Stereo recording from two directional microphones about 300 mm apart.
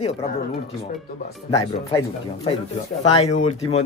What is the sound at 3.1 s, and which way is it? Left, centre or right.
Speech, left.